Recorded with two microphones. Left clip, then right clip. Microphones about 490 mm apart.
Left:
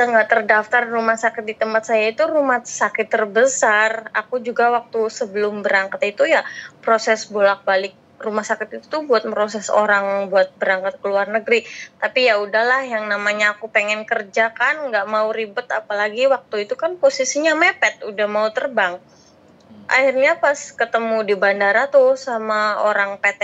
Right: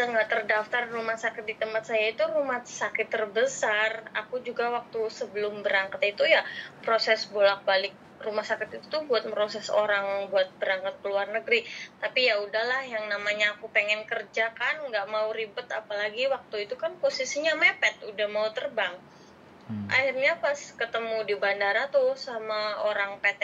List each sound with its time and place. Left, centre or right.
0.0 s a woman's voice: left